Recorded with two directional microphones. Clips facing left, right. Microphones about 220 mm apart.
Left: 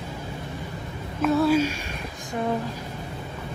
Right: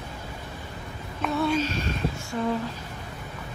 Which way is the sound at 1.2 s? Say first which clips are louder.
Left 5 dB; 5° left (ahead or behind).